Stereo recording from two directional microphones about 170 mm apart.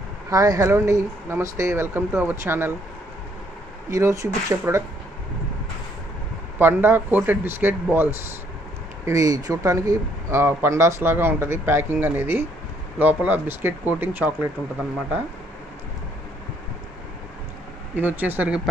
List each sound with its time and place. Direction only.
0.3 s speech: 20° right (ahead or behind)
3.9 s speech: 20° right (ahead or behind)
6.6 s speech: 10° right (ahead or behind)
17.9 s speech: 10° right (ahead or behind)